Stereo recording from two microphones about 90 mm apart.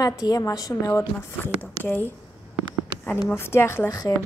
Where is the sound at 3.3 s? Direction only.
30° left (ahead or behind).